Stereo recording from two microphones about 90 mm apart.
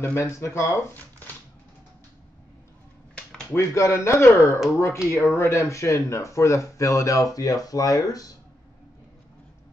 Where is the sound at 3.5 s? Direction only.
30° left (ahead or behind).